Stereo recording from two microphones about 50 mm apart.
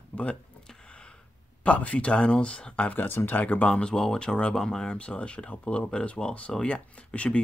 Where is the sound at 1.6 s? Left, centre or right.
Left.